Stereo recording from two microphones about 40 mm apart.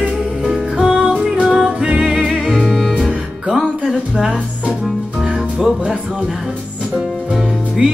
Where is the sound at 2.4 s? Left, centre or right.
Centre.